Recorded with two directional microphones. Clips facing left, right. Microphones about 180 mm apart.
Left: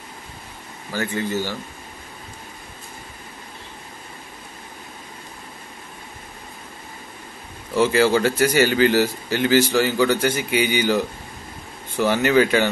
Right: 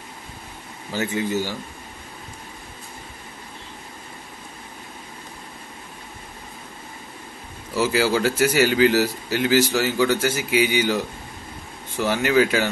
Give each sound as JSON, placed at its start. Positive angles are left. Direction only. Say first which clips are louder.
{"t": 0.9, "sound": "speech", "louder": "right 1 dB", "side_deg": -15}
{"t": 7.7, "sound": "a man's voice", "louder": "left 3 dB", "side_deg": -5}